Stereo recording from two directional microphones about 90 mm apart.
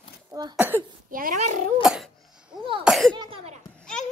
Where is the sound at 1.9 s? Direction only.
5° right (ahead or behind).